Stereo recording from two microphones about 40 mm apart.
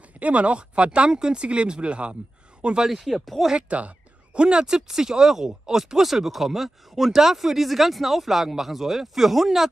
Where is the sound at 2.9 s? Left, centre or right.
Centre.